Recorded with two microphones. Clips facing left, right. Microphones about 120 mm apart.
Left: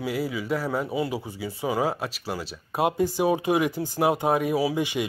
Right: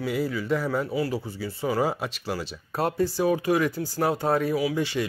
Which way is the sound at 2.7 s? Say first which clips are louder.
Left 1 dB; 15° left (ahead or behind).